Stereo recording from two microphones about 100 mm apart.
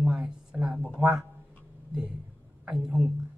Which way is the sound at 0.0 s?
Centre (ahead or behind).